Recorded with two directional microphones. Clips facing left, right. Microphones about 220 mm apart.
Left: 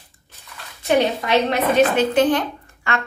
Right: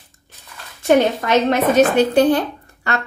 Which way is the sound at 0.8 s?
45° right (ahead or behind).